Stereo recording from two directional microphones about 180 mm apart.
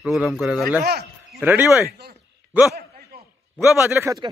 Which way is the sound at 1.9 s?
60° right (ahead or behind).